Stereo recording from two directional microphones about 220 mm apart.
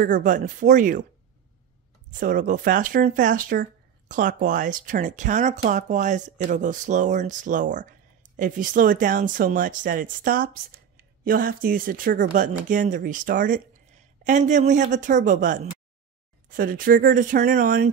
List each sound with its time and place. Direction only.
0.0 s speech: 35° right (ahead or behind)
2.1 s speech: 35° right (ahead or behind)